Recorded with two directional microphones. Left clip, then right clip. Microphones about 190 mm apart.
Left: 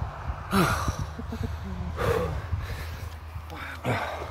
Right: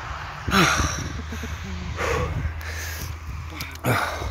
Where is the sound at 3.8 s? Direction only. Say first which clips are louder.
Right 6 dB; 40° right (ahead or behind).